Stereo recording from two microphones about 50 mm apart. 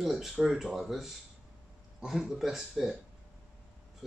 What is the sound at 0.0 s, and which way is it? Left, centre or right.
Speech, centre.